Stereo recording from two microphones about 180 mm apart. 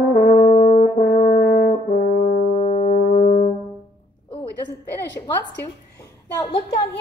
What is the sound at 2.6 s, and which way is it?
French horn, 45° left (ahead or behind).